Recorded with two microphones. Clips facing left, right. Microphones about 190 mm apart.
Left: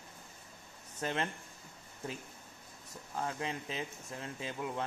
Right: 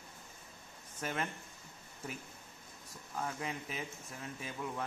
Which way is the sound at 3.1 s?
20° left (ahead or behind).